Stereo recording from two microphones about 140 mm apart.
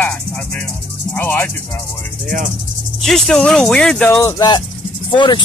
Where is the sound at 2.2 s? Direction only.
70° right (ahead or behind).